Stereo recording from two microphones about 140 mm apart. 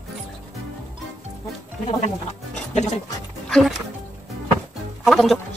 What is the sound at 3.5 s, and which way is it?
Speech, 5° left (ahead or behind).